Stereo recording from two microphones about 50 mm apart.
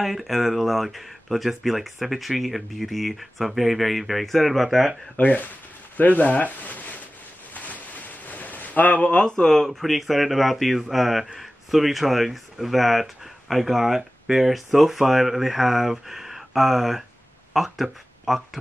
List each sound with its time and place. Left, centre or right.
0.0 s speech: centre
5.1 s speech: left
7.5 s a sound: left
9.2 s speech: centre
9.7 s speech: centre